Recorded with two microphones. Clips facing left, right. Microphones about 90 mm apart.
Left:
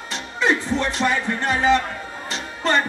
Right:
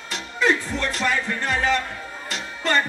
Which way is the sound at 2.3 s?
30° left (ahead or behind).